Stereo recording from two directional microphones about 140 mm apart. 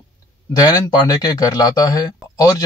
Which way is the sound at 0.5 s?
25° left (ahead or behind).